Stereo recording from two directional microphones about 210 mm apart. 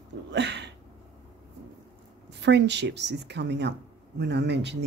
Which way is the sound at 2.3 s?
55° right (ahead or behind).